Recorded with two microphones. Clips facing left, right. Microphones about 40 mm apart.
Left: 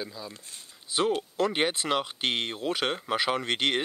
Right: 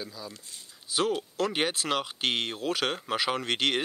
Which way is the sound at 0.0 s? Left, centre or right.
Centre.